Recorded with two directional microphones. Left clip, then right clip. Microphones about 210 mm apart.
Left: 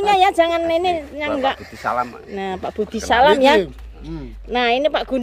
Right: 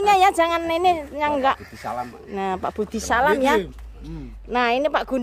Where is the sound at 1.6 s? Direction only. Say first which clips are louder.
Left 4 dB; 35° left (ahead or behind).